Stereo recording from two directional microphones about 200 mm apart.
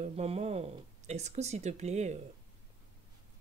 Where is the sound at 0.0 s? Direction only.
30° right (ahead or behind).